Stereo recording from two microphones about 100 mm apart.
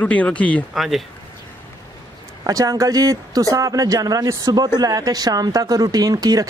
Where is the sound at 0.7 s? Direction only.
Centre (ahead or behind).